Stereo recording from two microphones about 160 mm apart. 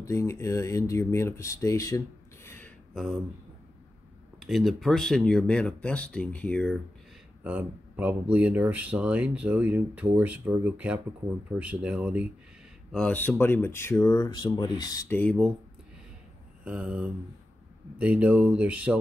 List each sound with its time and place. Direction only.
0.0 s speech: 15° left (ahead or behind)
2.9 s speech: centre (ahead or behind)
4.4 s speech: centre (ahead or behind)
7.4 s speech: 10° right (ahead or behind)
12.9 s speech: 5° left (ahead or behind); by 15.0 s 25° left (ahead or behind)
15.0 s speech: 10° left (ahead or behind)
16.6 s speech: 10° right (ahead or behind)